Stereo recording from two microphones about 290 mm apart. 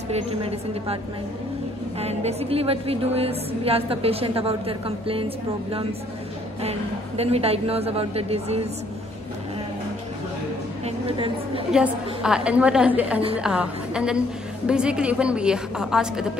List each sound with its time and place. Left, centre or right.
0.1 s a woman's voice: right
2.0 s a woman's voice: right
6.6 s a woman's voice: right
11.1 s a woman's voice: centre
11.7 s a woman's voice: centre